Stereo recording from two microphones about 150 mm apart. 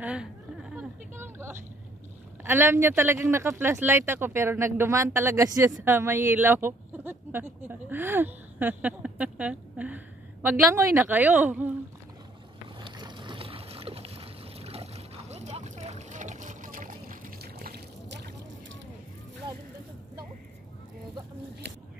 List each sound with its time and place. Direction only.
0.0 s a sound: 5° right (ahead or behind)
2.4 s speech: 15° right (ahead or behind)
12.8 s boat: 30° right (ahead or behind); by 17.7 s 80° right